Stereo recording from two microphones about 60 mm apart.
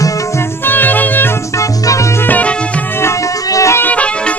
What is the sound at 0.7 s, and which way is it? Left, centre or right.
Music, left.